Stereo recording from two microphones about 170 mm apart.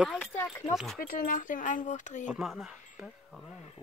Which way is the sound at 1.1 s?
55° left (ahead or behind).